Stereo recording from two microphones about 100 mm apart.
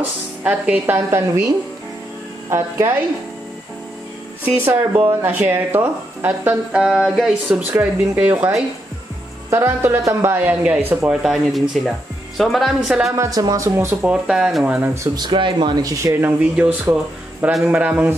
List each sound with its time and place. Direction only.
0.4 s speech: 15° right (ahead or behind)
0.9 s speech: 25° right (ahead or behind)
2.5 s speech: 25° right (ahead or behind)
4.6 s speech: 20° right (ahead or behind); by 7.6 s 5° right (ahead or behind)
7.7 s speech: 20° right (ahead or behind)
11.1 s speech: 5° right (ahead or behind)
13.1 s speech: 35° right (ahead or behind)
14.0 s speech: 10° right (ahead or behind)
15.1 s speech: 50° right (ahead or behind)
15.8 s speech: 35° right (ahead or behind)
16.3 s speech: 15° right (ahead or behind)